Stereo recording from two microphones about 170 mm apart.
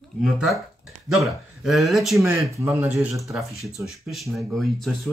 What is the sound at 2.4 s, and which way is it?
Speech, 15° right (ahead or behind).